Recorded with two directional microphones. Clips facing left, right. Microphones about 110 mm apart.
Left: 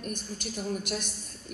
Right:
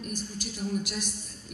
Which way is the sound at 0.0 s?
50° left (ahead or behind).